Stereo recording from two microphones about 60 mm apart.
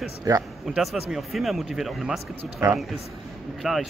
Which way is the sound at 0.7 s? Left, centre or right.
Centre.